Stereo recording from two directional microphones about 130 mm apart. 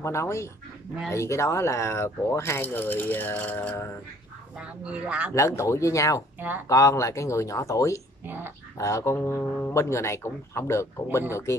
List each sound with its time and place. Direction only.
0.0 s speech: 20° left (ahead or behind)
4.6 s speech: 10° right (ahead or behind)
5.3 s speech: 20° left (ahead or behind)
8.3 s speech: 15° right (ahead or behind)
8.7 s speech: 25° left (ahead or behind)